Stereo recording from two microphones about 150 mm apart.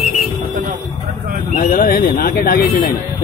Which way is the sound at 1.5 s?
65° left (ahead or behind).